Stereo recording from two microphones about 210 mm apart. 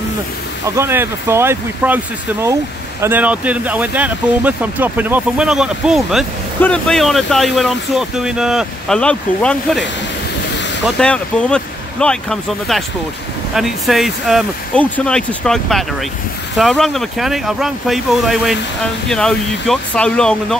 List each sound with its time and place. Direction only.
0.7 s speech: 10° right (ahead or behind)
3.0 s speech: 10° right (ahead or behind)
11.0 s speech: 5° left (ahead or behind)